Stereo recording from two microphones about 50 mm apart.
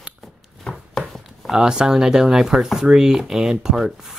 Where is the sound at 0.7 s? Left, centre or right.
Left.